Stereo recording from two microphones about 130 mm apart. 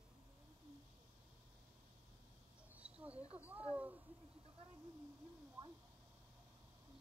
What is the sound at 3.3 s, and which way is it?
Speech, 10° right (ahead or behind).